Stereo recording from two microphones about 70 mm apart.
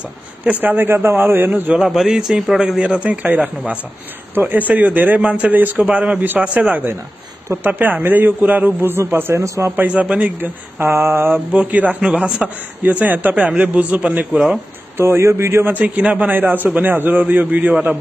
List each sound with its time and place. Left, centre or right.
0.4 s a man's voice: right
1.8 s a man's voice: centre
2.8 s a man's voice: centre
8.9 s speech: right
9.8 s a man's voice: centre
10.9 s speech: right
11.5 s a man's voice: right
15.0 s speech: right
15.7 s a man's voice: right